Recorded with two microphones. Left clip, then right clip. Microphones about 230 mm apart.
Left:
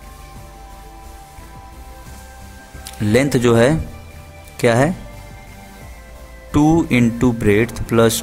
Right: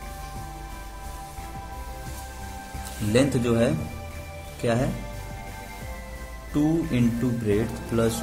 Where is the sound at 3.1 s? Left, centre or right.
Left.